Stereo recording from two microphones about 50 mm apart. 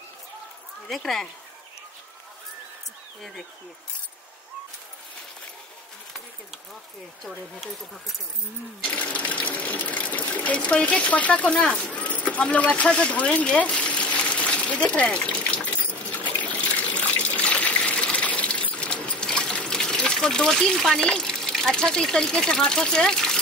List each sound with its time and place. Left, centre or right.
0.8 s speech: centre
8.8 s water: left
20.2 s speech: centre